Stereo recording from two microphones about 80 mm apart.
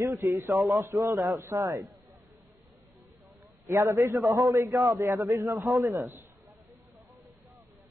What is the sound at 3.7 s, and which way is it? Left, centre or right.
A man's voice, right.